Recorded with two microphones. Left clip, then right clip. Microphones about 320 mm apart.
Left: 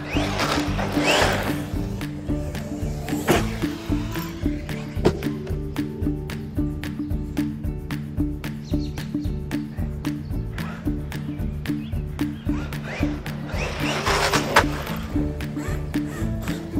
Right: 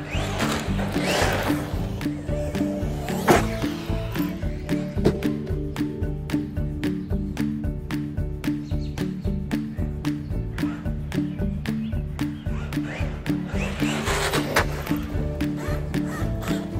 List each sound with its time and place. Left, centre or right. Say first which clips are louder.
0.1 s music: left 3 dB; left
3.2 s music: right 3 dB; centre
5.0 s music: left 2 dB; centre
13.8 s music: left 4 dB; centre
15.4 s music: right 2 dB; centre